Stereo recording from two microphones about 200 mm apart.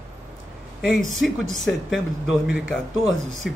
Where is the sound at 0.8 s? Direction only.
Centre (ahead or behind).